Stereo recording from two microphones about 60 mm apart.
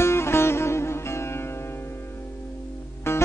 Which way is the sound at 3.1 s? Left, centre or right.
Left.